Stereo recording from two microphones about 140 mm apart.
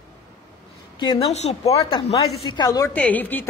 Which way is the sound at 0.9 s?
35° left (ahead or behind).